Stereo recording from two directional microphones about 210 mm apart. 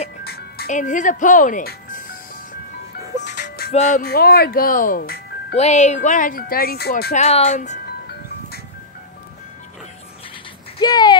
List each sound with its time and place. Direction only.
0.2 s music: 50° left (ahead or behind)
0.7 s speech: 35° left (ahead or behind)
3.2 s music: 35° left (ahead or behind)
3.7 s speech: 35° left (ahead or behind)
4.0 s speech: 45° left (ahead or behind)
5.6 s speech: 35° left (ahead or behind)
7.2 s speech: 30° left (ahead or behind)
10.8 s speech: 20° left (ahead or behind)